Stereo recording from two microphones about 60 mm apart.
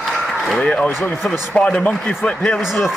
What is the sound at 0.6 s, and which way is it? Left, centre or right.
Speech, left.